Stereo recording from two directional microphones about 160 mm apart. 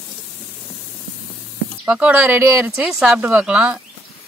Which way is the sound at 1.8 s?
10° right (ahead or behind).